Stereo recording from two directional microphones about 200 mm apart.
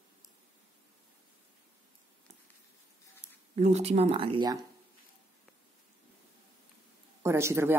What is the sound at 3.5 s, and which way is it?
Speech, 35° right (ahead or behind).